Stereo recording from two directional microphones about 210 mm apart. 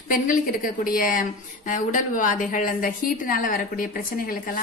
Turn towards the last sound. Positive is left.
turn(degrees=40)  # may be behind; listen again after turning